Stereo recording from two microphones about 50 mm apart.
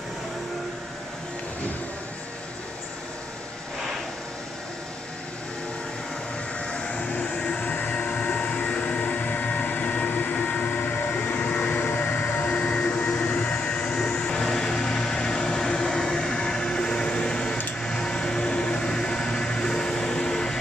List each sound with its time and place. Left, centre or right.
6.7 s vehicle: left
13.0 s train: left
13.5 s vehicle: centre
17.8 s a sound: centre